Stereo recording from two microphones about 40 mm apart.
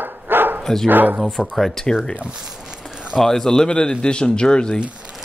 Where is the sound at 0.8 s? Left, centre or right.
Right.